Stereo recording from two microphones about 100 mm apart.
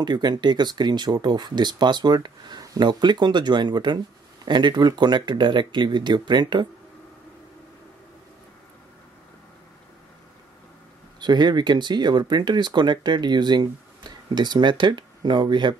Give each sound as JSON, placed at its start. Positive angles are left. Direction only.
{"t": 0.0, "sound": "speech", "side_deg": -45}
{"t": 11.1, "sound": "speech", "side_deg": -45}